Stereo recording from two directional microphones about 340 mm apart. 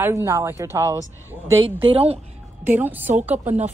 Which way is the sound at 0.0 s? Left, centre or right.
Centre.